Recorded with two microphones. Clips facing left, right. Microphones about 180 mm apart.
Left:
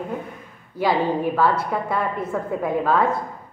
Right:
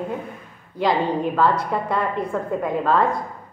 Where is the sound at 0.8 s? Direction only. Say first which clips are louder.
Even; 5° left (ahead or behind).